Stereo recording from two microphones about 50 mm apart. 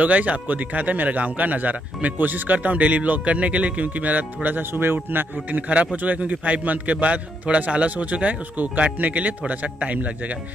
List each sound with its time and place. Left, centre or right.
0.0 s a man's voice: right